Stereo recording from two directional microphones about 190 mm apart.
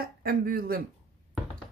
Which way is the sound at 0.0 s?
50° right (ahead or behind).